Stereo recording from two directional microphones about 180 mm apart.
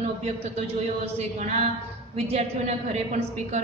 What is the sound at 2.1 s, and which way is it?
Speech, 35° right (ahead or behind).